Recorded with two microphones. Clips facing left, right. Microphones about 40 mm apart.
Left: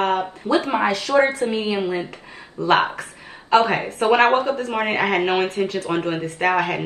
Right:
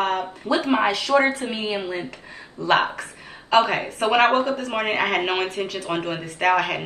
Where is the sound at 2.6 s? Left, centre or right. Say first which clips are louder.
Left 2 dB; left.